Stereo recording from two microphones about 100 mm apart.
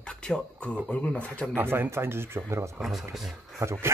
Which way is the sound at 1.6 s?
25° right (ahead or behind).